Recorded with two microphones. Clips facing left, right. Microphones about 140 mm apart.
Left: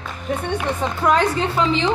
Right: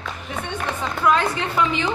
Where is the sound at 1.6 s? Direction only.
25° left (ahead or behind).